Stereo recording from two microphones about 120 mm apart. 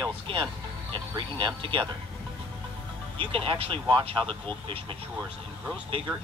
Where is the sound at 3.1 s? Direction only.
50° right (ahead or behind).